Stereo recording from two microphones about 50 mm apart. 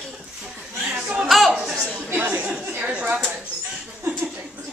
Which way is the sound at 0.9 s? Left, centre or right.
Right.